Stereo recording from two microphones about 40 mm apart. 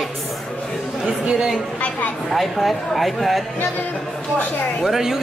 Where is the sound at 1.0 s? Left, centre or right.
Centre.